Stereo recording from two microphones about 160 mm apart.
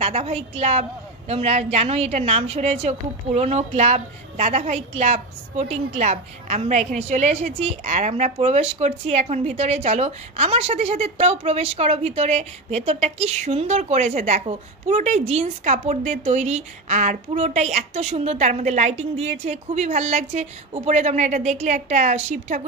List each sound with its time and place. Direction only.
0.0 s a woman's voice: 40° right (ahead or behind)